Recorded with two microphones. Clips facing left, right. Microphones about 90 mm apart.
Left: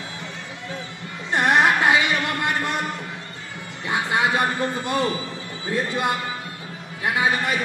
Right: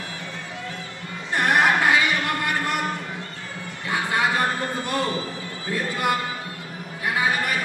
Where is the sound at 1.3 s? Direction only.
20° left (ahead or behind).